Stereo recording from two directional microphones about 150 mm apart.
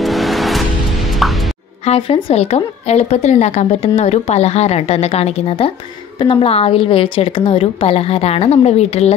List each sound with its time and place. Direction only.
0.0 s music: centre (ahead or behind)
1.9 s a woman's voice: 40° left (ahead or behind)